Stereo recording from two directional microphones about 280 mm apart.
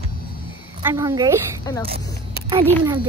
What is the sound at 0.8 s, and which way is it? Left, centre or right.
Speech, centre.